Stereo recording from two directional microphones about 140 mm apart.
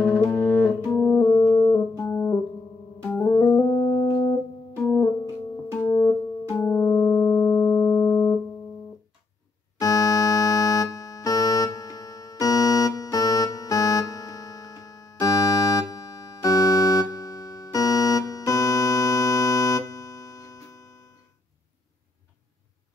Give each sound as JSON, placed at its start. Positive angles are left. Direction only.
{"t": 0.0, "sound": "music", "side_deg": 5}
{"t": 0.3, "sound": "music", "side_deg": 20}
{"t": 0.6, "sound": "music", "side_deg": 5}
{"t": 0.9, "sound": "music", "side_deg": 20}
{"t": 3.1, "sound": "keyboard", "side_deg": 20}
{"t": 4.8, "sound": "music", "side_deg": 20}
{"t": 9.8, "sound": "music", "side_deg": 25}